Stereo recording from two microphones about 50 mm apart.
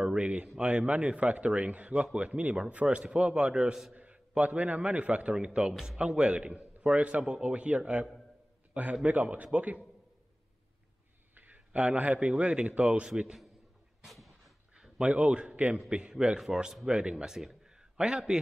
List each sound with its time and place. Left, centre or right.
0.1 s a man's voice: right
11.3 s a man's voice: right; by 13.4 s centre
14.0 s a sound: centre
14.8 s a man's voice: right